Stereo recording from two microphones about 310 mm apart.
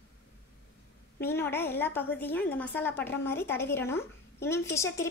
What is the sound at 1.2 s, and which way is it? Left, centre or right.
A woman's voice, centre.